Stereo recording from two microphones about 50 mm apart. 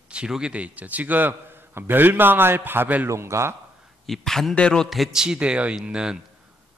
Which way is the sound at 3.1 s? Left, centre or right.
Right.